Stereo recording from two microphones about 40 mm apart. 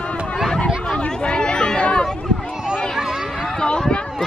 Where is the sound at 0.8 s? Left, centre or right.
Left.